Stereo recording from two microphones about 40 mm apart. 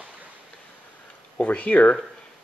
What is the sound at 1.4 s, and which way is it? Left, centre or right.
Speech, left.